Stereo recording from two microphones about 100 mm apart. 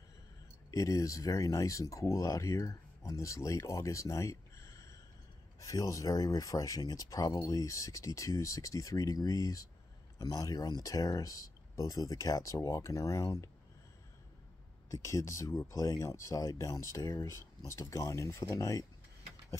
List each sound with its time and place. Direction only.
0.7 s speech: 35° left (ahead or behind)
14.9 s speech: 30° left (ahead or behind)